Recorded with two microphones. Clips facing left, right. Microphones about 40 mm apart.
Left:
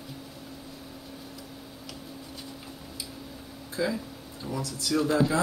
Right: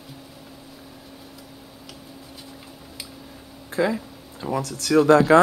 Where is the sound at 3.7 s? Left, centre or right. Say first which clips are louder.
Right 7 dB; right.